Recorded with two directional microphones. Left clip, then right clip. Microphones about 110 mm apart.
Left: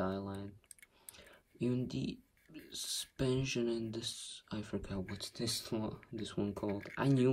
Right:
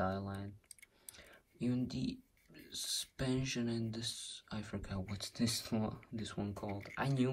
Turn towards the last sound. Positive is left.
turn(degrees=30)  # may be behind; listen again after turning